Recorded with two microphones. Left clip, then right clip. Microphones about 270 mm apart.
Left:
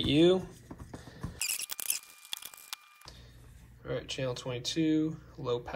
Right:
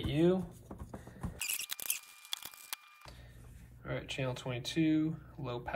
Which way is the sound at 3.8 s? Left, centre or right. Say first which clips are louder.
Left 4 dB; centre.